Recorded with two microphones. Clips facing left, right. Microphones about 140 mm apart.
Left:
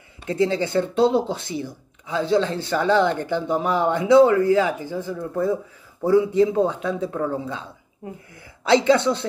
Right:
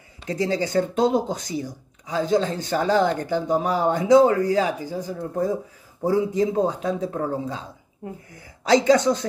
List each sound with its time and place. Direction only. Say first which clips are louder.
0.5 s a woman's voice: even; 40° right (ahead or behind)